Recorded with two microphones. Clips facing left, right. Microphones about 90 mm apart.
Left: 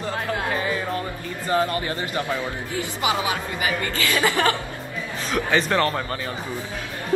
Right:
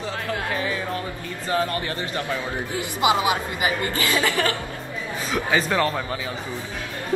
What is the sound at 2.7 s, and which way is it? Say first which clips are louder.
Speech: right 4 dB; 20° right (ahead or behind).